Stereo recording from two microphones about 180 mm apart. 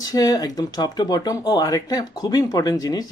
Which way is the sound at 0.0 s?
20° left (ahead or behind).